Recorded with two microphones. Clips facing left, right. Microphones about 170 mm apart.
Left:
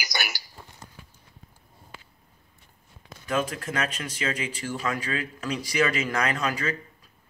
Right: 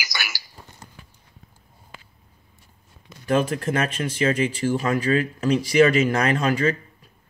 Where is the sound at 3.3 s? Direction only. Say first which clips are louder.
Right 6 dB; 30° right (ahead or behind).